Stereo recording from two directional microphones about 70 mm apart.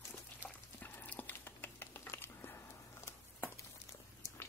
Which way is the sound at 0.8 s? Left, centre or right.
Left.